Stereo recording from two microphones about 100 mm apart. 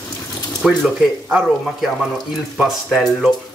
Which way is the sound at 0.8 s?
Centre (ahead or behind).